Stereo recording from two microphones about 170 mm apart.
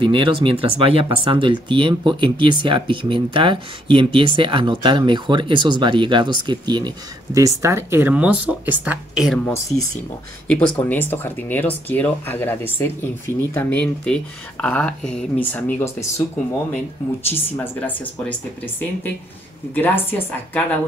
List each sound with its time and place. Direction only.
0.0 s a woman's voice: 30° right (ahead or behind); by 9.4 s 5° right (ahead or behind)
9.4 s speech: 15° left (ahead or behind)
17.3 s speech: 10° left (ahead or behind)
19.7 s speech: 10° left (ahead or behind)